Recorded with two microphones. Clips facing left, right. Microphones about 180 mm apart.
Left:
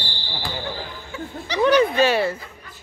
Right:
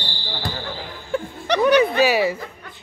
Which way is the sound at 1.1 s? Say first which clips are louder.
Right 9 dB; 60° right (ahead or behind).